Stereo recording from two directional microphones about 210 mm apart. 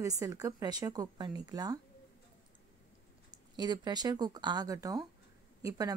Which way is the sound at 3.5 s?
20° right (ahead or behind).